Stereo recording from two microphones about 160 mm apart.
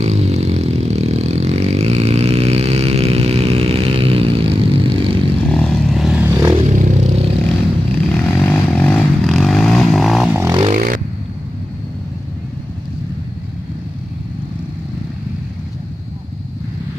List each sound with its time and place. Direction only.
0.0 s vehicle: 45° right (ahead or behind)
5.5 s vehicle: 5° left (ahead or behind)
6.2 s vehicle: 20° right (ahead or behind)
6.6 s vehicle: 50° right (ahead or behind)
8.3 s vehicle: 15° left (ahead or behind)
10.3 s vehicle: 15° right (ahead or behind)
10.7 s a sound: 55° right (ahead or behind)